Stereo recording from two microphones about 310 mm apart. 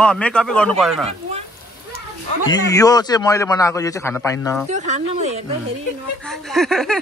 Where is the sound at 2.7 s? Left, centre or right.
Centre.